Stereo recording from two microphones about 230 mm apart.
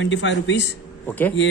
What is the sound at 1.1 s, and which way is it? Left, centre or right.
Speech, centre.